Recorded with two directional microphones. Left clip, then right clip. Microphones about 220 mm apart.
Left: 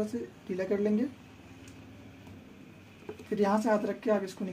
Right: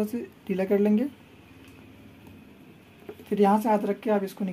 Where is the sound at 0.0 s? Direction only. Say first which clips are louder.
Right 4 dB; 40° right (ahead or behind).